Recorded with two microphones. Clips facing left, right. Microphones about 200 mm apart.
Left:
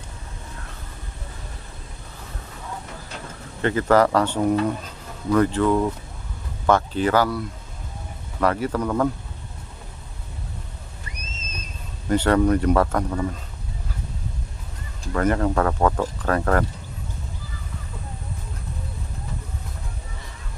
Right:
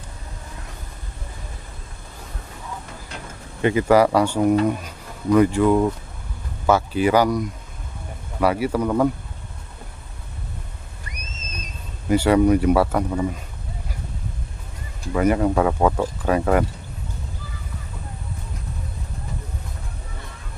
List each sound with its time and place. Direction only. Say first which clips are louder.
3.6 s speech: right 2 dB; 10° right (ahead or behind)
12.1 s speech: right 2 dB; 10° right (ahead or behind)
15.1 s speech: right 2 dB; 10° right (ahead or behind)